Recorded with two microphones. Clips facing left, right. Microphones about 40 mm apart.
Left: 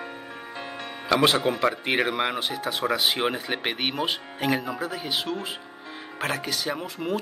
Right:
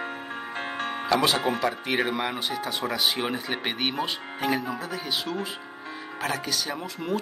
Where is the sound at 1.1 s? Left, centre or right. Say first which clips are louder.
Left 3 dB; left.